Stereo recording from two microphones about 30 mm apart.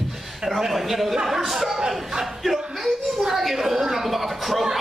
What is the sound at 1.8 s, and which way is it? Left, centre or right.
Speech, centre.